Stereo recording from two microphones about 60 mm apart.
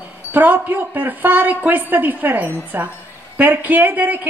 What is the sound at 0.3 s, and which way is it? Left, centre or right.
A woman's voice, right.